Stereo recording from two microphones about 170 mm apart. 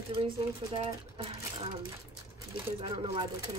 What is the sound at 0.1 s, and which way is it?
Speech, 30° right (ahead or behind).